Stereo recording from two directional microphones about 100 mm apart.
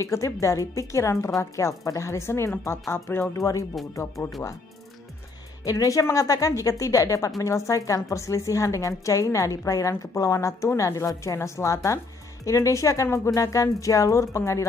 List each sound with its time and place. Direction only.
0.0 s a woman's voice: 30° left (ahead or behind)
5.7 s a woman's voice: 35° left (ahead or behind)